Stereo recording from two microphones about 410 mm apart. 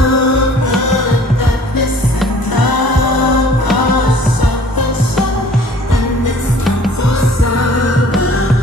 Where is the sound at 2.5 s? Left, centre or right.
Left.